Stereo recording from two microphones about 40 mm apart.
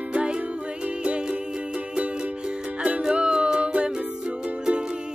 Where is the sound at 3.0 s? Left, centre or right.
Right.